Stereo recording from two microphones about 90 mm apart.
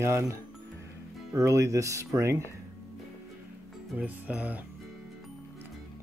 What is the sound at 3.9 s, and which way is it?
Speech, 15° right (ahead or behind).